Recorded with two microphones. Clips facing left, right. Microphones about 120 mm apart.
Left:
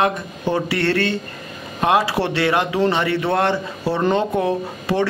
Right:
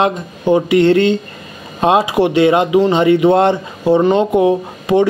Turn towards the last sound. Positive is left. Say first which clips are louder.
# right 7 dB
turn(degrees=-15)  # may be behind; listen again after turning